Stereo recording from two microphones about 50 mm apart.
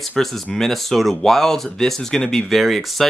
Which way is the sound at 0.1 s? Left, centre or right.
Centre.